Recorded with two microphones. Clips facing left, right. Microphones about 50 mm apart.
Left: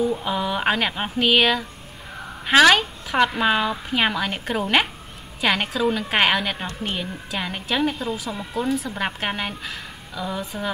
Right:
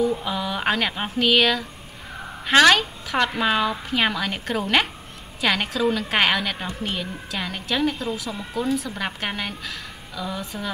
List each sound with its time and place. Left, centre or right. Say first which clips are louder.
0.2 s speech: left 2 dB; centre